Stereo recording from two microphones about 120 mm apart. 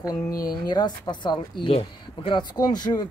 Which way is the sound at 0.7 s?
35° left (ahead or behind).